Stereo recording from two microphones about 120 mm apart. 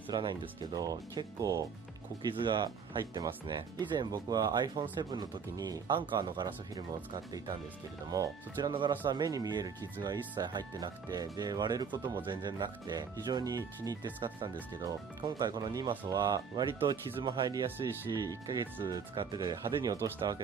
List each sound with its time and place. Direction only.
0.1 s speech: 40° right (ahead or behind)
2.3 s speech: 40° right (ahead or behind)
8.1 s speech: 30° right (ahead or behind)